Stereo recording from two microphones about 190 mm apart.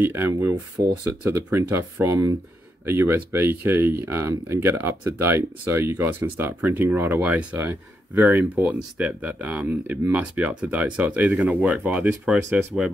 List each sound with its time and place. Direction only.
0.0 s speech: 10° right (ahead or behind)